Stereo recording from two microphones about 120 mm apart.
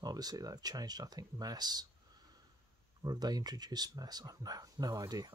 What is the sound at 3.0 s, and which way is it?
Speech, 35° right (ahead or behind).